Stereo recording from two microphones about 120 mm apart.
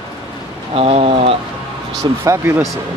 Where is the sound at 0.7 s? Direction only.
55° right (ahead or behind).